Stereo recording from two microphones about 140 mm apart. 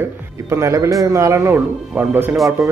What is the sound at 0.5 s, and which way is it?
Speech, 20° right (ahead or behind).